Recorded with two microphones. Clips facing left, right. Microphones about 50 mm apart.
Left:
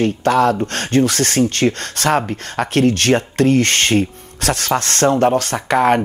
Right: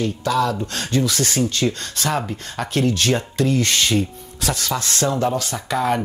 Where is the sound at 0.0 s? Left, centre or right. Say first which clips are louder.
Left 6 dB; left.